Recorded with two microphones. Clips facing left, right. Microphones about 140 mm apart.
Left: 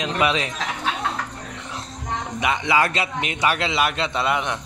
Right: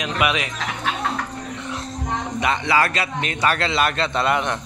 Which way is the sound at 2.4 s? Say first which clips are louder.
Even; 15° left (ahead or behind).